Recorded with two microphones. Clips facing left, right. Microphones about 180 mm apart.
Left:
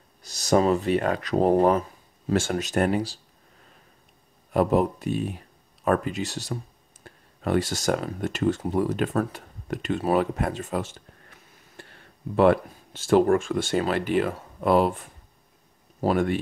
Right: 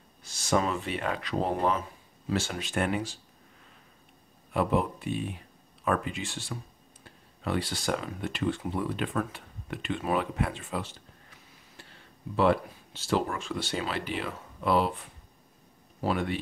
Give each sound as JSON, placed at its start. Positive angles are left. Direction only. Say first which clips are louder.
{"t": 0.2, "sound": "speech", "louder": "left 6 dB", "side_deg": 40}
{"t": 4.5, "sound": "speech", "louder": "left 6 dB", "side_deg": 40}